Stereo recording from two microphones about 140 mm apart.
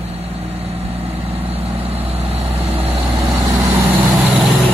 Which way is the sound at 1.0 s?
45° right (ahead or behind).